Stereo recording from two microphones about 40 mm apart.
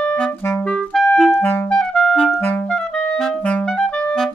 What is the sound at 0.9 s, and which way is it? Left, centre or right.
Clarinet, centre.